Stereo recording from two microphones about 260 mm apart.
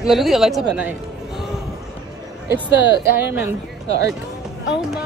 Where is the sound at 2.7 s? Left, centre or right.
Left.